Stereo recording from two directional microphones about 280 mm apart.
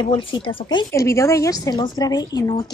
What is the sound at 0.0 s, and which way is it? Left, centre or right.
Speech, centre.